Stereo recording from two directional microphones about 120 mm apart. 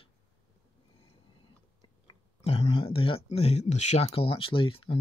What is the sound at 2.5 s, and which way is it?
Speech, 55° left (ahead or behind).